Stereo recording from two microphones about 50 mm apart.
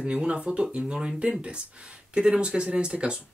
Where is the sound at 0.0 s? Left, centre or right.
Right.